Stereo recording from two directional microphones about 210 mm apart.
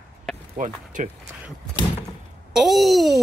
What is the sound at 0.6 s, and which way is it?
Speech, 35° right (ahead or behind).